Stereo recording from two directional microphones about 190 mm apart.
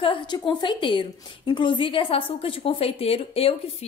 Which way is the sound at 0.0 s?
25° left (ahead or behind).